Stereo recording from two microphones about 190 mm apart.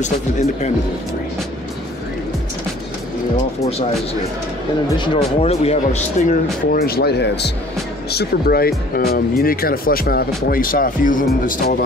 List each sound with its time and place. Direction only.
0.0 s speech: 35° left (ahead or behind)
4.9 s speech: 25° left (ahead or behind); by 11.8 s 50° left (ahead or behind)